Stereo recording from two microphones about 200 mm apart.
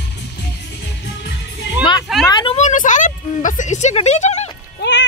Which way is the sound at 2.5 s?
40° left (ahead or behind).